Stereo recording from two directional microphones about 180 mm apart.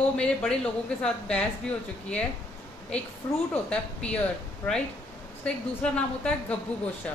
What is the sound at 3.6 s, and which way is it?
Speech, 5° left (ahead or behind).